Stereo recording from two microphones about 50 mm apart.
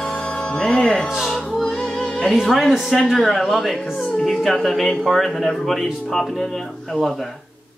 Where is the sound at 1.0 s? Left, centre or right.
Centre.